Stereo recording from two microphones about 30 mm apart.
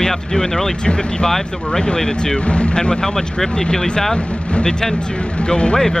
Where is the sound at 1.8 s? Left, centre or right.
Left.